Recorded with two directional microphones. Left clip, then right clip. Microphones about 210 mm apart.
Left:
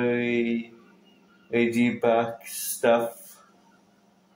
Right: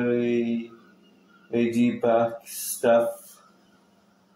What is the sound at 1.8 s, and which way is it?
Speech, 30° left (ahead or behind).